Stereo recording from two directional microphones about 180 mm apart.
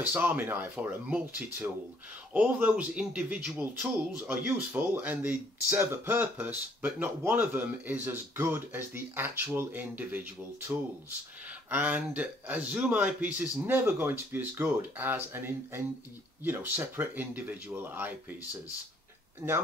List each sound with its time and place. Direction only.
0.0 s speech: 10° right (ahead or behind)
11.7 s speech: 10° right (ahead or behind)
19.4 s speech: 15° right (ahead or behind)